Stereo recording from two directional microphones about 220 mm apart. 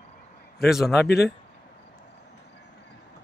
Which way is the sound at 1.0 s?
45° left (ahead or behind).